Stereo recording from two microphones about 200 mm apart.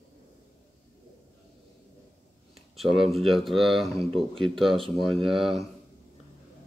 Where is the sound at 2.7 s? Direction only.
Centre (ahead or behind).